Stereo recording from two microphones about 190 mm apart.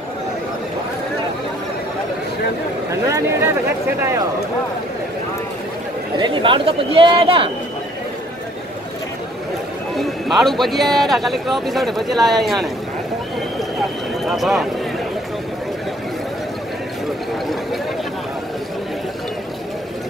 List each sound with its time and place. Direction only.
2.9 s speech: 15° right (ahead or behind)
6.1 s speech: 25° right (ahead or behind)
9.9 s a man's voice: centre (ahead or behind)
14.2 s speech: centre (ahead or behind)